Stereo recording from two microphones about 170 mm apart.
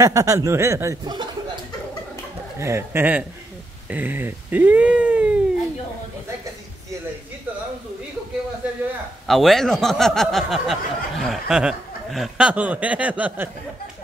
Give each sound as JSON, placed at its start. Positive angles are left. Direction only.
{"t": 0.0, "sound": "speech", "side_deg": -20}
{"t": 2.6, "sound": "speech", "side_deg": -15}
{"t": 9.3, "sound": "speech", "side_deg": 0}